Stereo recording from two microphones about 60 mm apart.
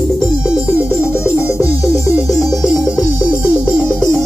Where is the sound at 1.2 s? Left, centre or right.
Left.